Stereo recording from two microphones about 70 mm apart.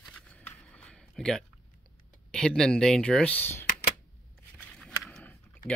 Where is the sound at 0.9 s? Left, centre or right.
Centre.